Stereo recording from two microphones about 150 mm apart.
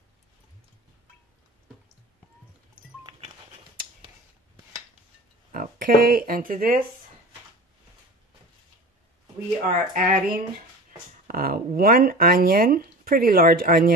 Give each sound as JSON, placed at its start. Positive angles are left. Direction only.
{"t": 5.5, "sound": "speech", "side_deg": -65}
{"t": 9.7, "sound": "speech", "side_deg": -65}